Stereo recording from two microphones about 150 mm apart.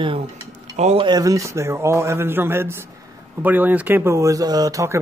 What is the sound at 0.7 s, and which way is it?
Speech, 50° right (ahead or behind).